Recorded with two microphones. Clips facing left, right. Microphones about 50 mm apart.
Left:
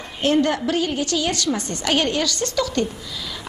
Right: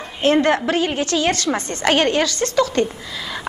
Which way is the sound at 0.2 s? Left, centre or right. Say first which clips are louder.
Right 3 dB; right.